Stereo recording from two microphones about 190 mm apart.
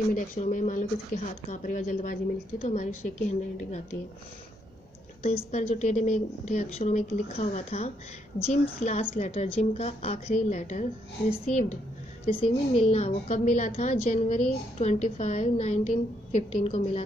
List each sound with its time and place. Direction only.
0.1 s a woman's voice: 45° left (ahead or behind)
5.2 s a woman's voice: 35° left (ahead or behind)
16.6 s a woman's voice: 30° left (ahead or behind)